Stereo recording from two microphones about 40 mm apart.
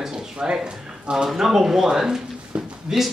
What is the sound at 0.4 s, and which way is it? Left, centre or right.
Speech, right.